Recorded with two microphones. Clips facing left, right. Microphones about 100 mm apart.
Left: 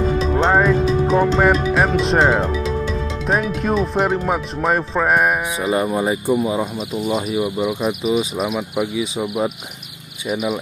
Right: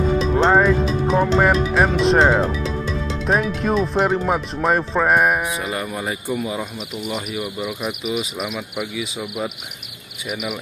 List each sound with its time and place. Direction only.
0.3 s music: centre (ahead or behind)
3.3 s speech: centre (ahead or behind)
5.7 s speech: 25° left (ahead or behind)